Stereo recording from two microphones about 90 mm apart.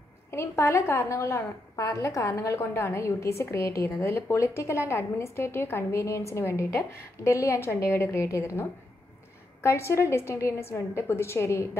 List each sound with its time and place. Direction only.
0.3 s a woman's voice: 30° left (ahead or behind)
9.6 s a woman's voice: 30° left (ahead or behind)